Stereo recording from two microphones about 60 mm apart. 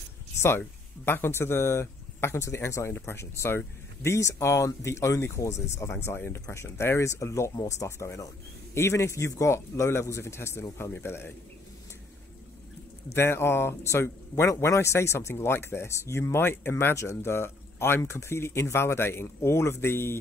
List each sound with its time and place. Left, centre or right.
0.6 s speech: left
7.5 s speech: left
8.7 s speech: left
13.1 s speech: left